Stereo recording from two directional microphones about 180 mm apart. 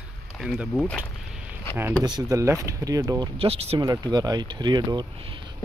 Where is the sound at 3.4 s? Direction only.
35° right (ahead or behind).